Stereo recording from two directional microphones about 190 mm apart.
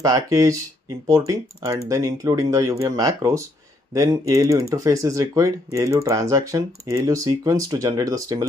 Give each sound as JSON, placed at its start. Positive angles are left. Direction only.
{"t": 0.0, "sound": "speech", "side_deg": -20}